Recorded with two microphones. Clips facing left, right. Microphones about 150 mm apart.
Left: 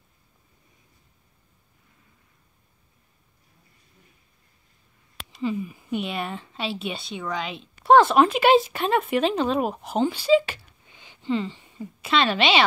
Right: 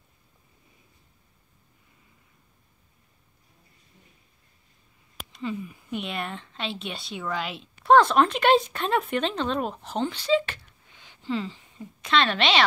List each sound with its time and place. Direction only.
5.3 s a woman's voice: centre (ahead or behind)